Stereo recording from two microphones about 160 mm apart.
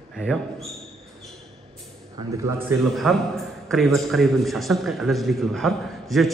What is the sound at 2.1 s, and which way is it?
Speech, 20° right (ahead or behind).